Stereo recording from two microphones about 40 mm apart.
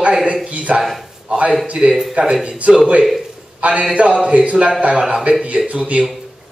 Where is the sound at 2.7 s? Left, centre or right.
Right.